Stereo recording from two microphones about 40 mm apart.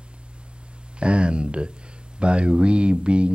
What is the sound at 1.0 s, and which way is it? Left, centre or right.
Speech, right.